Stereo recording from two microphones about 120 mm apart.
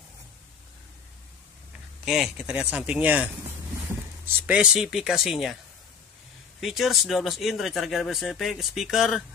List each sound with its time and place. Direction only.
2.0 s speech: 5° right (ahead or behind)
4.5 s speech: 5° right (ahead or behind)
6.6 s speech: centre (ahead or behind)